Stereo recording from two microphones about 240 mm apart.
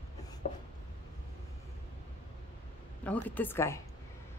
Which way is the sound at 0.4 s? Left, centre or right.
Left.